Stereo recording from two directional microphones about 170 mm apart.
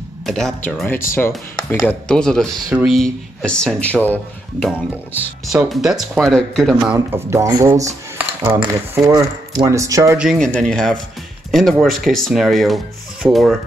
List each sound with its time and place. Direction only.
0.3 s speech: 5° left (ahead or behind)
6.8 s speech: 15° right (ahead or behind)
10.1 s speech: centre (ahead or behind)